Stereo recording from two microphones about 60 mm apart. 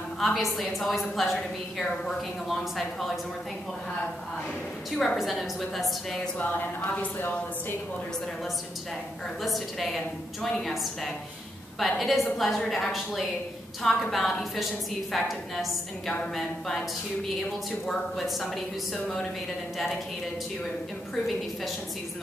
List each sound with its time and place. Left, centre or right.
0.2 s a woman's voice: centre
5.1 s a woman's voice: centre
6.3 s speech: left
9.4 s a woman's voice: centre